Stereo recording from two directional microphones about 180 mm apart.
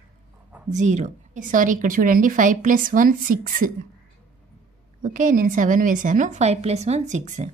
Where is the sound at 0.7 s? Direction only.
40° right (ahead or behind).